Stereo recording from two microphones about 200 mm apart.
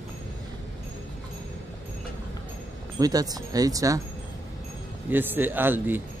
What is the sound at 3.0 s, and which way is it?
Speech, 20° right (ahead or behind).